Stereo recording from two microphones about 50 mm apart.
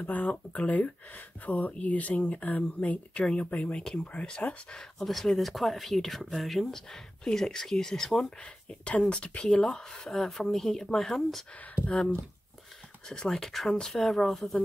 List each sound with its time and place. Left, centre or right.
0.0 s speech: left
4.7 s speech: centre
8.4 s speech: left
13.1 s speech: centre